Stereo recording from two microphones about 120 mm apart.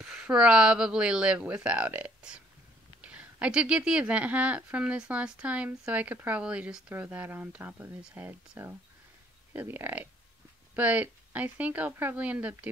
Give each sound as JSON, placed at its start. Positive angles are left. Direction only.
{"t": 0.0, "sound": "speech", "side_deg": -5}